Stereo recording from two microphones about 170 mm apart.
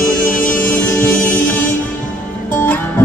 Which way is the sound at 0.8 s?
10° left (ahead or behind).